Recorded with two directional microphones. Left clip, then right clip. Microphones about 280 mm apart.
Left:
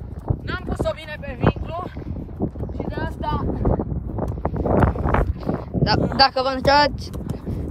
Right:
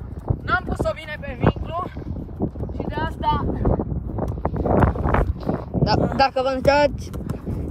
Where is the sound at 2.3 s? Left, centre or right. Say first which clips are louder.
Even; centre.